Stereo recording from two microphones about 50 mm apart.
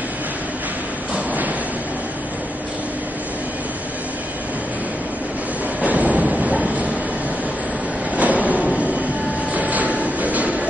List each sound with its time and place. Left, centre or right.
1.1 s a sound: right
5.8 s train: right
8.2 s train: right
10.0 s music: right